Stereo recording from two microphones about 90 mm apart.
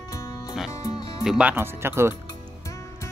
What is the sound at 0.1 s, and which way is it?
Music, 35° left (ahead or behind).